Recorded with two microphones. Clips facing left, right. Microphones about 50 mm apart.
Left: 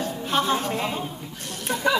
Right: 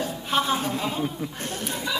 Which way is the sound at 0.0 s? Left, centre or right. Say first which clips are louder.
Left 1 dB; centre.